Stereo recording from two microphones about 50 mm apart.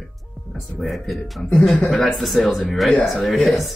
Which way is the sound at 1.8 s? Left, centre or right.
Left.